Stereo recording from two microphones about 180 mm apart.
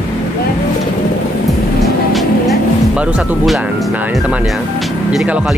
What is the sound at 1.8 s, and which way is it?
Vehicle, centre (ahead or behind).